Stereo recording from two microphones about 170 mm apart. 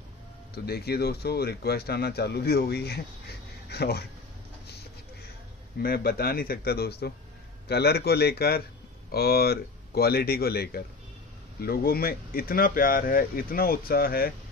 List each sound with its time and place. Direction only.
0.7 s a man's voice: 70° left (ahead or behind)
5.8 s a man's voice: 65° left (ahead or behind)